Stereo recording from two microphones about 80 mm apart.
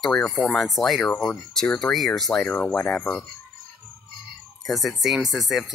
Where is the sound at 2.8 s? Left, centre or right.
Centre.